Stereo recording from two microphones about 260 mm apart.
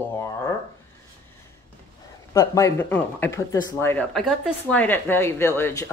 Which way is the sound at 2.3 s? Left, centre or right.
Centre.